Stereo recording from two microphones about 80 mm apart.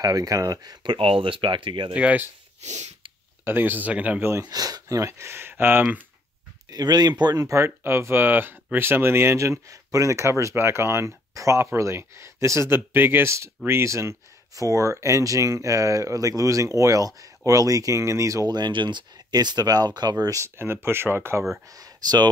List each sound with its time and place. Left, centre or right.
0.0 s speech: right
0.8 s speech: right
2.0 s speech: centre
3.4 s speech: right
4.2 s speech: right
4.5 s speech: right
6.7 s speech: right
7.5 s speech: right
20.3 s speech: right
21.6 s speech: right